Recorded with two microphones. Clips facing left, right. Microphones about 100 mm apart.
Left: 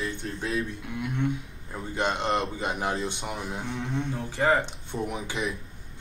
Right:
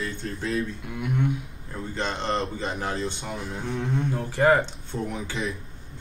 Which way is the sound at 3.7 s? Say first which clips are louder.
Right 5 dB; 5° right (ahead or behind).